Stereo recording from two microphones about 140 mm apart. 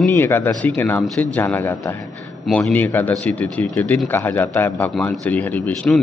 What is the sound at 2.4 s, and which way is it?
Speech, 5° left (ahead or behind).